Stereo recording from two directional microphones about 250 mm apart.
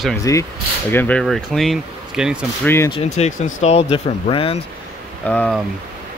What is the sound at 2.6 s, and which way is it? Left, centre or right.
Speech, centre.